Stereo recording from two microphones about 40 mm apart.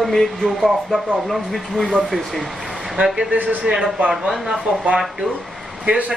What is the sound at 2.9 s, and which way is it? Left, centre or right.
Speech, centre.